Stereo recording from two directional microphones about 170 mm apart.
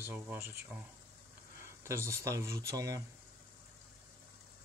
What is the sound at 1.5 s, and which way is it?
Speech, 15° right (ahead or behind).